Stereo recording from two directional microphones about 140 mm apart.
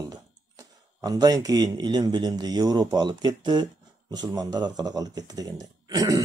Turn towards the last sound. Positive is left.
turn(degrees=-25)  # may be behind; listen again after turning